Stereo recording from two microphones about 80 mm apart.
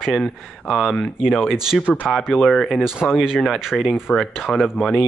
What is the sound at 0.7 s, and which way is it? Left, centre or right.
Speech, centre.